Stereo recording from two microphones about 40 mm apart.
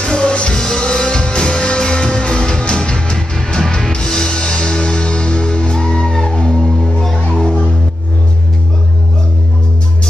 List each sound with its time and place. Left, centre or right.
0.0 s music: left
7.4 s music: left